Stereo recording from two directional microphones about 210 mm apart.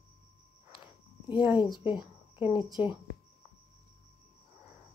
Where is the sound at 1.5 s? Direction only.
20° left (ahead or behind).